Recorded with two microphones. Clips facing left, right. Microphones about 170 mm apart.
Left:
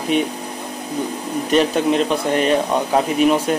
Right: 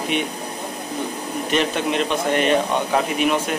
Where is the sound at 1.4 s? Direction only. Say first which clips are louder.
Left 5 dB; 40° left (ahead or behind).